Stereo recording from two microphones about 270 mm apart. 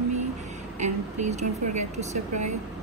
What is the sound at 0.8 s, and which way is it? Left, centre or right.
Speech, right.